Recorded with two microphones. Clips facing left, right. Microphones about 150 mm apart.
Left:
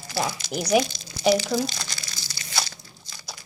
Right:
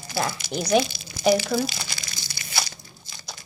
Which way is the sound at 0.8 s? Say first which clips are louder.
Even; 5° right (ahead or behind).